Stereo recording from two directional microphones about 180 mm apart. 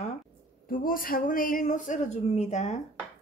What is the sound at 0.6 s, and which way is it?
Speech, 50° left (ahead or behind).